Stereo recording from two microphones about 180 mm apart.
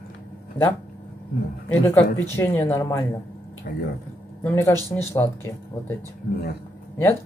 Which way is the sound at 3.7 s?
55° left (ahead or behind).